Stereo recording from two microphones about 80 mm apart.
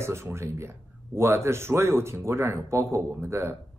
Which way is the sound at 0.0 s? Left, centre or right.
Right.